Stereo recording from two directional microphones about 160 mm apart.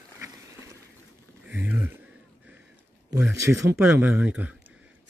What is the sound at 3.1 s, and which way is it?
Speech, 15° right (ahead or behind).